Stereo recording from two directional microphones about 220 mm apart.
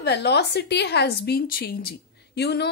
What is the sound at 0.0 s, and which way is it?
A woman's voice, 50° left (ahead or behind).